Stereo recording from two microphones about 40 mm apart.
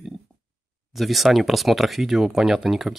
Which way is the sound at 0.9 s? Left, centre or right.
Centre.